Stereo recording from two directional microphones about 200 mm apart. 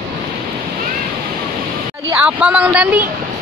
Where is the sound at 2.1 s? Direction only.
5° right (ahead or behind).